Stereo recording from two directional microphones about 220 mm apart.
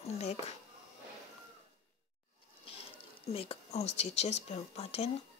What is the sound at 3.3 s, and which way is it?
Speech, 25° left (ahead or behind).